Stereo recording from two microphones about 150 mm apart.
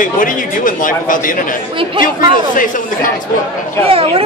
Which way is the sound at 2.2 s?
65° left (ahead or behind).